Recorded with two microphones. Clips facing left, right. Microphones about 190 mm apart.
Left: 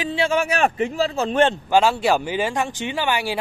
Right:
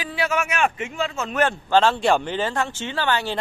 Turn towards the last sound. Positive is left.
turn(degrees=10)  # may be behind; listen again after turning